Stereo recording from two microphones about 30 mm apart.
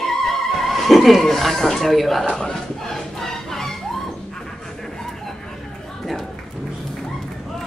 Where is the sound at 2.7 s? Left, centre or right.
Centre.